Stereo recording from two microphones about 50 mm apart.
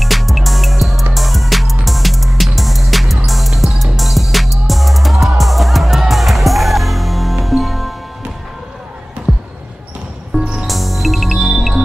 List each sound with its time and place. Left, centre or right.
0.0 s music: centre
9.3 s basketball bounce: centre
10.4 s music: centre
10.7 s music: centre